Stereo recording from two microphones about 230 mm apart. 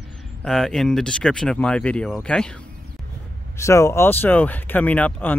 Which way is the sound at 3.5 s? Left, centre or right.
Centre.